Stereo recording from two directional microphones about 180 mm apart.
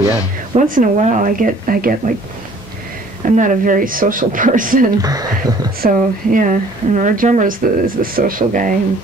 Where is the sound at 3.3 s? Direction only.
45° right (ahead or behind).